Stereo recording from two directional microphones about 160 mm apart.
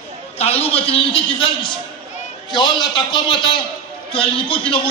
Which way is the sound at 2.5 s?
30° left (ahead or behind).